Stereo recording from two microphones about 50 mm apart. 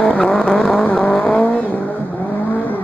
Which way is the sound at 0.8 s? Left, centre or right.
Left.